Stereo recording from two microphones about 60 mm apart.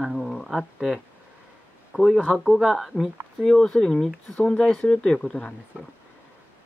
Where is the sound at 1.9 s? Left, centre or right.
Centre.